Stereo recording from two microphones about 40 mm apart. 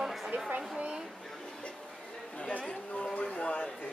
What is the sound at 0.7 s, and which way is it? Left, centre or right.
Speech, right.